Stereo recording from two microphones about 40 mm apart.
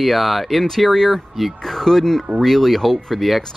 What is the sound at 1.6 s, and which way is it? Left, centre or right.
Speech, centre.